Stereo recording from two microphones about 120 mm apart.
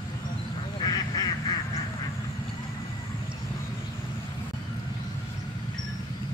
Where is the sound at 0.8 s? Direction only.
30° left (ahead or behind).